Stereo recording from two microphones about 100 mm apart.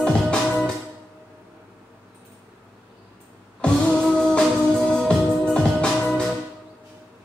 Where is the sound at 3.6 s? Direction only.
10° left (ahead or behind).